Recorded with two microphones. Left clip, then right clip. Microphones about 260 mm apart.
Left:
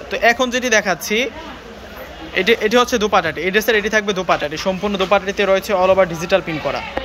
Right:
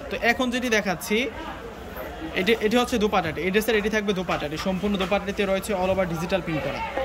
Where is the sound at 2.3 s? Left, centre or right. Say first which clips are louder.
Left 8 dB; centre.